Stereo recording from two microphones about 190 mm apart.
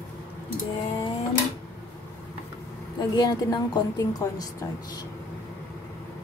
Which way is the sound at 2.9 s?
20° left (ahead or behind).